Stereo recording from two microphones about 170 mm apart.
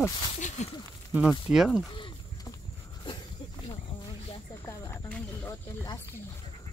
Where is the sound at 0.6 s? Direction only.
40° left (ahead or behind).